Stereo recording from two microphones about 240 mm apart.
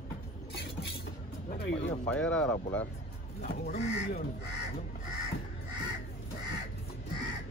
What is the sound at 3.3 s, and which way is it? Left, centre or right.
Speech, left.